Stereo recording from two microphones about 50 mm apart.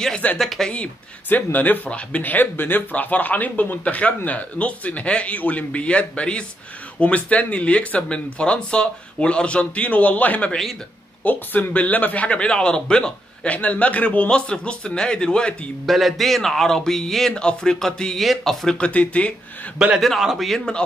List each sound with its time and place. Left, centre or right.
0.4 s speech: centre
1.3 s speech: left
1.9 s speech: left
2.3 s speech: left; by 13.5 s centre
13.5 s speech: left
15.8 s speech: centre
17.3 s a man's voice: centre
18.8 s speech: left
20.0 s speech: centre